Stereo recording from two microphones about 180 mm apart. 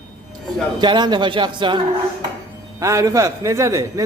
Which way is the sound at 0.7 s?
25° right (ahead or behind).